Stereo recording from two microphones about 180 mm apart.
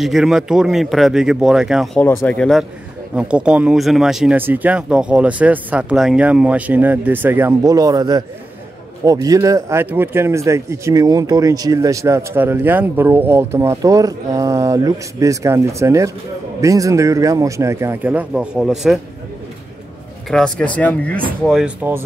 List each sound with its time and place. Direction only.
0.0 s speech: centre (ahead or behind)
2.0 s speech: 10° left (ahead or behind)
3.2 s speech: 5° right (ahead or behind)
20.2 s speech: 5° left (ahead or behind)
21.5 s speech: 5° right (ahead or behind)